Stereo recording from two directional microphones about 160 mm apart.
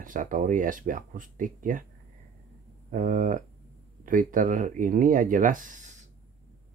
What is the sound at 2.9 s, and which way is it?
Speech, 55° right (ahead or behind).